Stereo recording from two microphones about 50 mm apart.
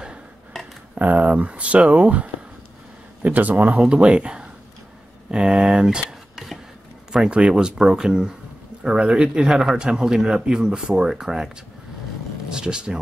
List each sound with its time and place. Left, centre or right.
0.9 s speech: right
3.7 s speech: centre
6.0 s a sound: centre
7.2 s speech: right
12.5 s speech: centre